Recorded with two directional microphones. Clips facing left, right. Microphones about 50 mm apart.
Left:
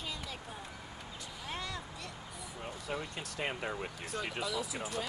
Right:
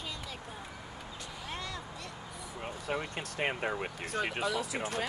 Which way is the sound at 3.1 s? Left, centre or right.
Right.